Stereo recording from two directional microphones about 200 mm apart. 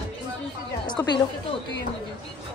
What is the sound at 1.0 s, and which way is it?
Speech, 15° left (ahead or behind).